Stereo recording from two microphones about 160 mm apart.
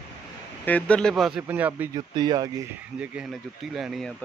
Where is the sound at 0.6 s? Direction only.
10° left (ahead or behind).